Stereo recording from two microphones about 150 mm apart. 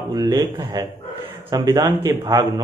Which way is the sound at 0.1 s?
25° right (ahead or behind).